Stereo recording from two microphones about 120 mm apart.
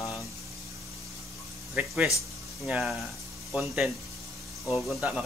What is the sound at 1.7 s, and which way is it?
Speech, 10° right (ahead or behind).